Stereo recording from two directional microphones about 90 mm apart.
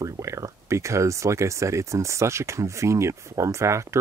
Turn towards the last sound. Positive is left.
turn(degrees=-35)  # may be behind; listen again after turning